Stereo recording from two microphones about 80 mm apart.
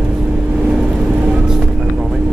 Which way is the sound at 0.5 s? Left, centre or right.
Centre.